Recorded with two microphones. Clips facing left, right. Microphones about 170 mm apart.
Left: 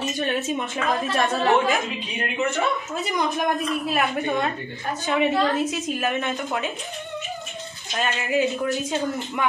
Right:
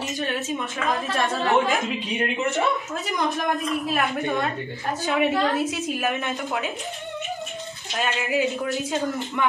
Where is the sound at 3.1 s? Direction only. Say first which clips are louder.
Left 1 dB; centre (ahead or behind).